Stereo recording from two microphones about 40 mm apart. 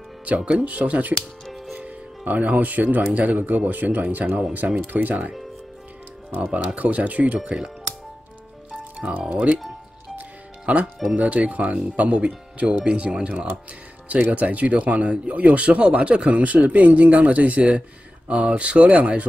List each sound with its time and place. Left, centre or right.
0.4 s speech: right
0.7 s speech: right
6.3 s speech: right
7.4 s speech: right
10.1 s music: right
11.1 s speech: right
12.0 s speech: right
14.3 s speech: right